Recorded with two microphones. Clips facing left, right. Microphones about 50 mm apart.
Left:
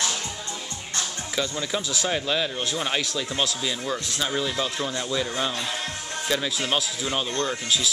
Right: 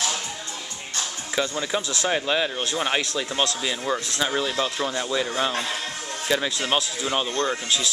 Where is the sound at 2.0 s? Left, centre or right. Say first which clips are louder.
Right 3 dB; centre.